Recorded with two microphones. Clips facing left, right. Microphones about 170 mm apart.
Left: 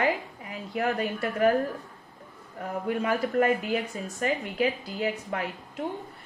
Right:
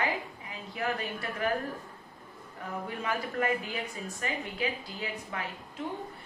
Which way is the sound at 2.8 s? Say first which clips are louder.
Left 8 dB; 40° left (ahead or behind).